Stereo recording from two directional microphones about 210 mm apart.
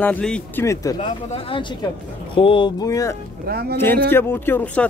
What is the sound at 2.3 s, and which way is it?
Speech, 25° left (ahead or behind).